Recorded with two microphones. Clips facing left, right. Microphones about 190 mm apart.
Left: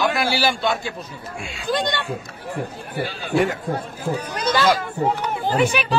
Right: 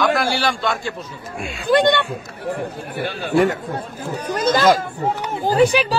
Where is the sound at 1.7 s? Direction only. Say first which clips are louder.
Right 8 dB; 60° right (ahead or behind).